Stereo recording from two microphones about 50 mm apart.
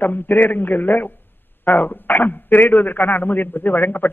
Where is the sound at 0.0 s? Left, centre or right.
Left.